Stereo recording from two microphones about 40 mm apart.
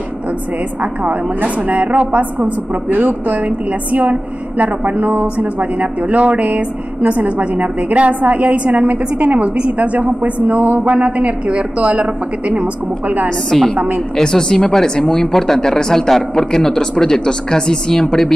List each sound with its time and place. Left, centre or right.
0.7 s a woman's voice: right
9.4 s a woman's voice: right
13.5 s speech: centre
13.7 s a woman's voice: right
14.1 s speech: centre